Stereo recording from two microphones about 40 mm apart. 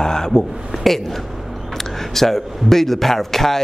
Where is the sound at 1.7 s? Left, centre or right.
Centre.